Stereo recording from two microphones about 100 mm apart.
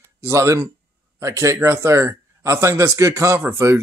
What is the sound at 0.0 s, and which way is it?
A man's voice, 30° right (ahead or behind).